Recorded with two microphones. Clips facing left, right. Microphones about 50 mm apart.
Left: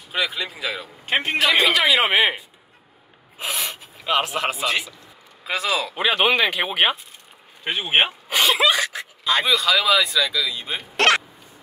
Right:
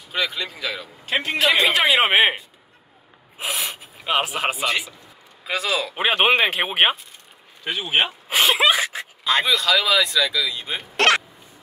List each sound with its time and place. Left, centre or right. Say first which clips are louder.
0.1 s speech: even; centre
1.0 s a man's voice: even; left
1.8 s speech: right 1 dB; right
2.1 s speech: right 2 dB; centre
3.3 s snort: right 1 dB; centre
3.8 s speech: left 1 dB; centre
5.4 s speech: even; centre
6.0 s speech: right 1 dB; right
7.6 s speech: left 2 dB; left
8.3 s a sound: right 3 dB; right
9.2 s speech: even; centre
11.0 s hiccup: even; centre